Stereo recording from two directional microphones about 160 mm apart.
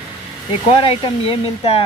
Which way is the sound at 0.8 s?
35° left (ahead or behind).